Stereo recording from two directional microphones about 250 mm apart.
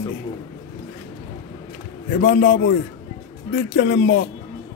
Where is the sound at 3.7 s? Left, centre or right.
Left.